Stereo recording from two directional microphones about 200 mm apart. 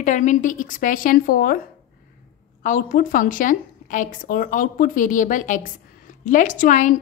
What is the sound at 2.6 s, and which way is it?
A woman's voice, 40° left (ahead or behind).